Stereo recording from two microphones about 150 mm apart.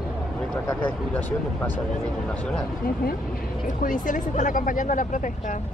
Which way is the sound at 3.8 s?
60° left (ahead or behind).